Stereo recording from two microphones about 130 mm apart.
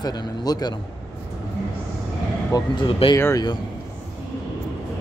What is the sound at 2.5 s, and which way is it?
Speech, 30° left (ahead or behind).